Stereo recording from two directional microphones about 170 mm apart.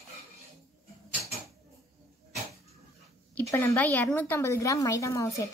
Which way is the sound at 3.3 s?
15° left (ahead or behind).